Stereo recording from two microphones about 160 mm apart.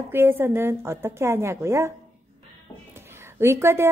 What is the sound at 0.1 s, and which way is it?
A woman's voice, 15° right (ahead or behind).